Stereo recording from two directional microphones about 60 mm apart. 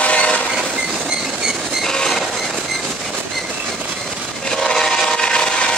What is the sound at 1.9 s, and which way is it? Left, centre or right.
Train, centre.